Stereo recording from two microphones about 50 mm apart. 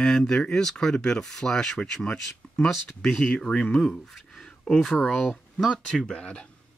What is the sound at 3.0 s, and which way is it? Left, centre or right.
Speech, centre.